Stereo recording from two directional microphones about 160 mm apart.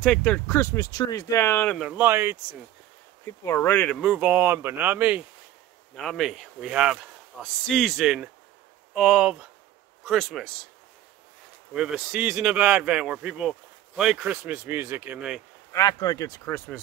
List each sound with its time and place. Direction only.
0.0 s speech: 5° left (ahead or behind)
0.9 s speech: 25° left (ahead or behind)
1.8 s speech: 10° right (ahead or behind)
3.4 s speech: 15° left (ahead or behind)
4.0 s speech: 5° right (ahead or behind)
5.9 s speech: centre (ahead or behind)
11.7 s speech: 5° right (ahead or behind)
15.7 s speech: 25° left (ahead or behind)